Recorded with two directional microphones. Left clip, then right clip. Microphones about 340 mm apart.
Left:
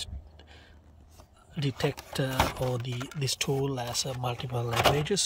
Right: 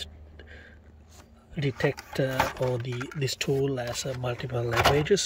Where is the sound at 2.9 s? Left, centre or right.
Left.